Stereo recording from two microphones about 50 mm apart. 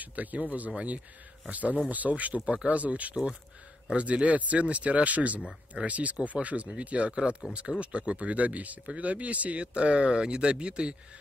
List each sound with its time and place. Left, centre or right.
0.0 s speech: right